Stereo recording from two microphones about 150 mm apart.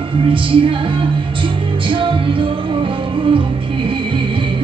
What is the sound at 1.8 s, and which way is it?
Music, 35° right (ahead or behind).